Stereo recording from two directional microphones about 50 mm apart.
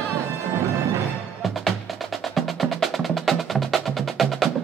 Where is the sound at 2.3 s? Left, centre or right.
Centre.